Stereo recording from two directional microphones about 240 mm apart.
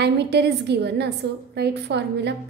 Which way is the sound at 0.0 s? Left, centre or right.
Right.